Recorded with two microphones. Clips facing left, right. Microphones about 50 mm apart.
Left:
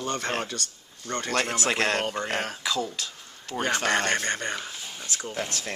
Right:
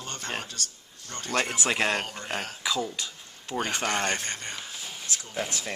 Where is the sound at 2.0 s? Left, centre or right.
Left.